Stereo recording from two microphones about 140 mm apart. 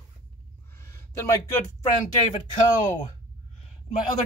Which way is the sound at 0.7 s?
20° left (ahead or behind).